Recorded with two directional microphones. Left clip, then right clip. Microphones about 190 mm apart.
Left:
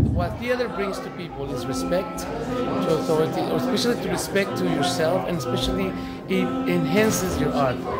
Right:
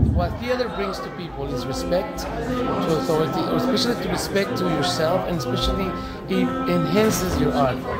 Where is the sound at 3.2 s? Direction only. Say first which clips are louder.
Right 1 dB; centre (ahead or behind).